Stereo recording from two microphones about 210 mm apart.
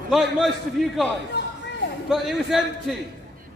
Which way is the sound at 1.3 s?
50° left (ahead or behind).